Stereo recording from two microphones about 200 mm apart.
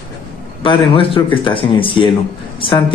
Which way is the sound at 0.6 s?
25° left (ahead or behind).